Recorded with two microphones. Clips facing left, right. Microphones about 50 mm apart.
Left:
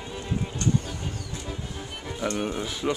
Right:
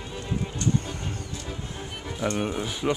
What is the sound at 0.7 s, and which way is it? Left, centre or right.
Music, right.